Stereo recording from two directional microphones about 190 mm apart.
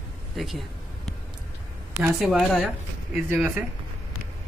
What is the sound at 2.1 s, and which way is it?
Speech, centre (ahead or behind).